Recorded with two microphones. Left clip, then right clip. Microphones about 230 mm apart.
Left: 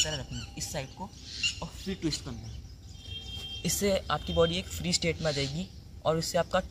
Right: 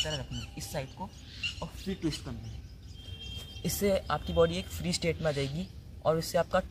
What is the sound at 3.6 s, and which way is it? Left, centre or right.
Speech, centre.